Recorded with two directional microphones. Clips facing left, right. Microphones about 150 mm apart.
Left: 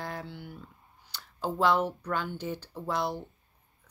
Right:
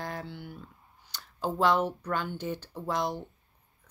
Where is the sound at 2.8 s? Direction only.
15° right (ahead or behind).